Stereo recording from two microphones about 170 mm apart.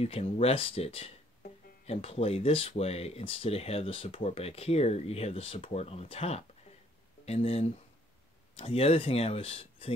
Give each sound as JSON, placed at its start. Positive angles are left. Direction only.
{"t": 0.0, "sound": "speech", "side_deg": 35}